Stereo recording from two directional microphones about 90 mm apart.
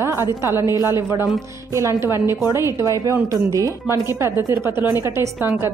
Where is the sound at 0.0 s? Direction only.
30° right (ahead or behind).